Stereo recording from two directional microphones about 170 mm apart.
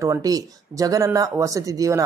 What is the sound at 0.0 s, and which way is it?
Speech, 20° right (ahead or behind).